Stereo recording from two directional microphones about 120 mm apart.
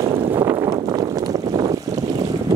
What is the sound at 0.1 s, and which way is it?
Boat, 45° right (ahead or behind).